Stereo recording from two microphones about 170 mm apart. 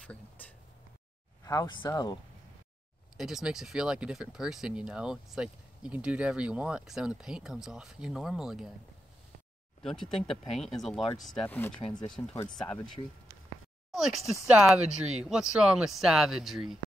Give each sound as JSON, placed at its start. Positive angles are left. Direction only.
{"t": 0.0, "sound": "a sound", "side_deg": 10}
{"t": 1.4, "sound": "speech", "side_deg": 20}
{"t": 3.2, "sound": "speech", "side_deg": 0}
{"t": 9.8, "sound": "speech", "side_deg": 5}
{"t": 12.4, "sound": "speech", "side_deg": 5}
{"t": 13.9, "sound": "speech", "side_deg": 0}